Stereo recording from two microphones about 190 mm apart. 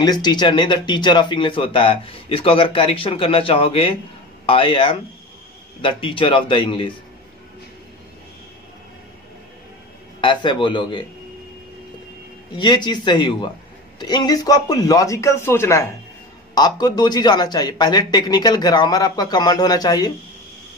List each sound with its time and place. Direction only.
0.0 s speech: 20° left (ahead or behind)
10.2 s speech: 25° left (ahead or behind)
12.5 s a man's voice: 25° left (ahead or behind)